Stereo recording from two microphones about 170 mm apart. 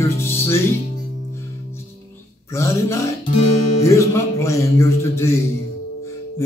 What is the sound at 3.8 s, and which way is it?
Music, 15° left (ahead or behind).